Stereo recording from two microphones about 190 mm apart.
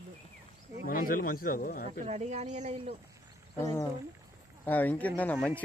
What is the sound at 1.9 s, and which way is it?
Speech, 35° right (ahead or behind).